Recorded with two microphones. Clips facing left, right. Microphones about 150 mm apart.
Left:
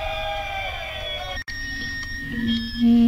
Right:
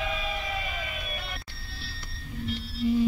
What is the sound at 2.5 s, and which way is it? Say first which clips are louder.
Music: left 10 dB; 70° left (ahead or behind).